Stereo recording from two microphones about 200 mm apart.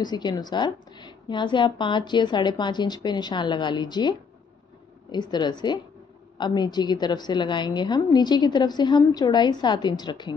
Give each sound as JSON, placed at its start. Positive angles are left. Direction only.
{"t": 0.0, "sound": "a woman's voice", "side_deg": 20}